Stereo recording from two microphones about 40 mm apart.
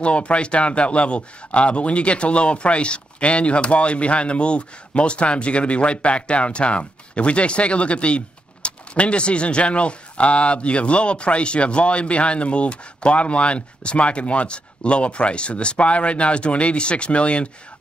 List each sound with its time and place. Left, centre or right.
0.0 s speech: left